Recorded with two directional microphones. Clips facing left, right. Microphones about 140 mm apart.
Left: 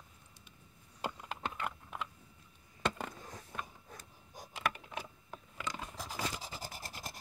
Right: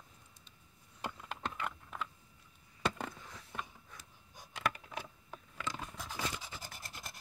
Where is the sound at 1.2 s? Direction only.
5° left (ahead or behind).